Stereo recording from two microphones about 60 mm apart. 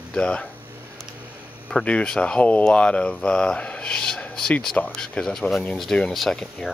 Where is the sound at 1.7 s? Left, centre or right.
Centre.